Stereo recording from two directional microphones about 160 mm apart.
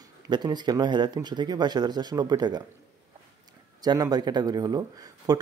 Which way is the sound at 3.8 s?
25° right (ahead or behind).